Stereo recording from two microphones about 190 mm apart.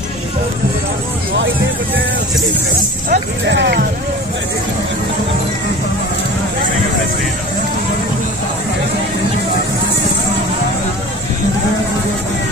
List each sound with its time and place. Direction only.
3.1 s speech: 65° right (ahead or behind)